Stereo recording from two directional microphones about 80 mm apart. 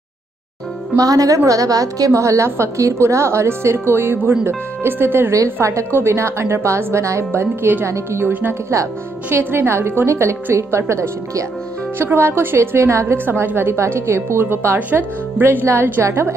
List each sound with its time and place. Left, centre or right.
0.9 s a woman's voice: right
5.3 s a woman's voice: right
8.3 s a woman's voice: right